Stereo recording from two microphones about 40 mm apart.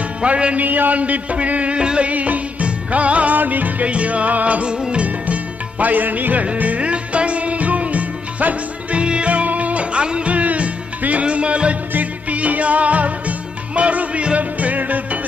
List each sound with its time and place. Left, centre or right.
0.2 s music: right
0.7 s music: right
2.0 s music: right
9.0 s music: right
9.3 s music: right
11.9 s music: right